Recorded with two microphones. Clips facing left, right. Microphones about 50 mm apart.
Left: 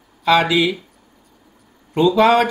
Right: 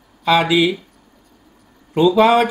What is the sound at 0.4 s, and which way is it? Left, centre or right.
Speech, centre.